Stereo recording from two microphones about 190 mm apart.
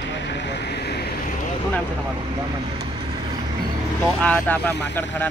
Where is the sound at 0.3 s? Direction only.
65° left (ahead or behind).